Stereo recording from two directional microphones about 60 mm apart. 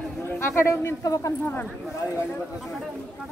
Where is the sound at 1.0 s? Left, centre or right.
Left.